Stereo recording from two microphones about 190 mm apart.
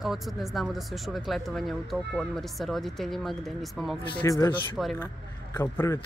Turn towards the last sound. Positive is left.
turn(degrees=15)  # may be behind; listen again after turning